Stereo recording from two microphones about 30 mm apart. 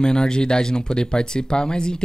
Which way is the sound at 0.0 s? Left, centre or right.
Left.